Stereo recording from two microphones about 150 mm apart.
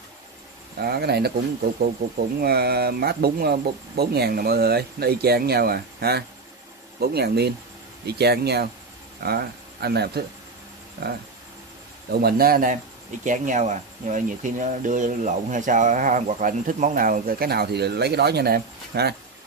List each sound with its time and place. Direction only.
0.7 s speech: 90° right
12.1 s speech: 90° right; by 12.7 s 75° right (ahead or behind)
13.2 s speech: 55° right (ahead or behind); by 19.1 s 90° right